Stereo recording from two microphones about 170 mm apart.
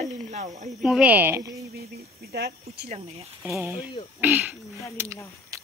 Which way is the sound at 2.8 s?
35° right (ahead or behind).